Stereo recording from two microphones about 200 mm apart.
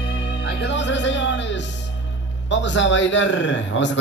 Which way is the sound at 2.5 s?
65° left (ahead or behind).